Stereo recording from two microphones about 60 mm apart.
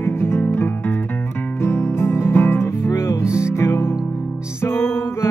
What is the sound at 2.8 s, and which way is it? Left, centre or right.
Music, left.